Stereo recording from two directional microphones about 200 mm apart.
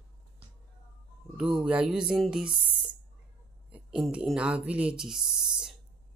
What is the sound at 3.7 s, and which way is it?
Speech, 5° right (ahead or behind).